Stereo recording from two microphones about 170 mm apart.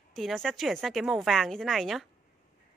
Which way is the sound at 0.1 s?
Centre (ahead or behind).